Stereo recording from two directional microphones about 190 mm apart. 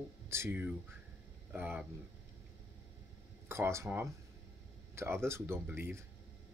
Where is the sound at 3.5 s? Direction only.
15° right (ahead or behind).